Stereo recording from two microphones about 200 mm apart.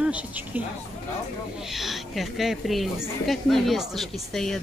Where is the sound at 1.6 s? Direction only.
Centre (ahead or behind).